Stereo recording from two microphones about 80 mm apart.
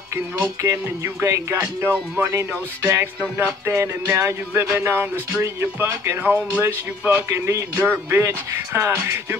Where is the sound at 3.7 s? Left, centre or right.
Right.